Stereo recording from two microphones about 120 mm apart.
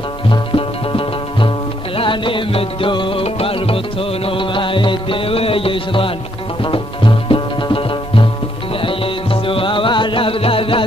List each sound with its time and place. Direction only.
0.3 s music: 50° left (ahead or behind)